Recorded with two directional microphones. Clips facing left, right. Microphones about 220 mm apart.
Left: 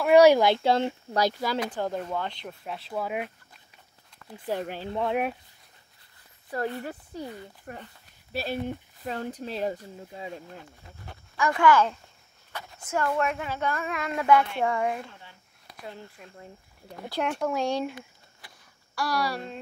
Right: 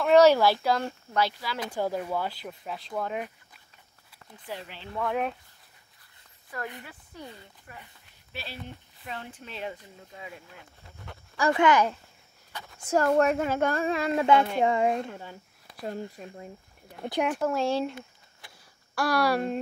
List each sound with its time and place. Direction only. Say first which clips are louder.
0.0 s speech: left 1 dB; 10° left (ahead or behind)
1.1 s speech: left 2 dB; 40° left (ahead or behind)
1.7 s speech: right 1 dB; 10° right (ahead or behind); by 3.3 s 10° left (ahead or behind)
4.5 s speech: left 9 dB; 45° left (ahead or behind)
4.9 s speech: left 2 dB; 25° left (ahead or behind)
6.8 s speech: left 8 dB; 35° left (ahead or behind)
7.7 s speech: left 6 dB; 50° left (ahead or behind); by 10.6 s 35° left (ahead or behind)
11.3 s speech: right 2 dB; 30° right (ahead or behind)
11.6 s speech: left 2 dB; 20° right (ahead or behind)
12.9 s a woman's voice: right 5 dB; 40° right (ahead or behind)
13.7 s speech: right 5 dB; 30° right (ahead or behind)
15.1 s speech: right 10 dB; 40° right (ahead or behind)
17.3 s speech: left 1 dB; centre (ahead or behind)
18.9 s speech: right 4 dB; 55° right (ahead or behind)